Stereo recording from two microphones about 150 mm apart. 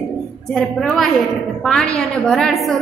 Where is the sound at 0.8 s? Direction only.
Centre (ahead or behind).